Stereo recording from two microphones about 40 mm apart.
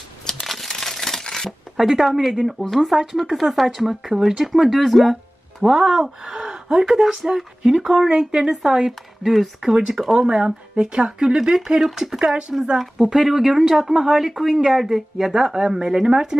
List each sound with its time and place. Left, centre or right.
0.4 s crumpling: centre
1.8 s speech: centre
5.6 s a woman's voice: centre
6.2 s gasp: centre
6.8 s a woman's voice: centre
9.6 s a woman's voice: centre
11.5 s a woman's voice: centre